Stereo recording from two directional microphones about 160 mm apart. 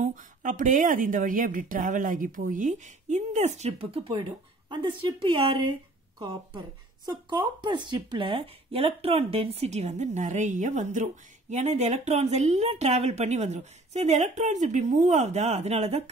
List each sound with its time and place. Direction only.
0.0 s a woman's voice: 55° right (ahead or behind)